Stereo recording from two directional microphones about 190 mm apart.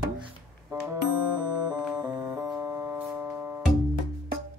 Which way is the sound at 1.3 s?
20° right (ahead or behind).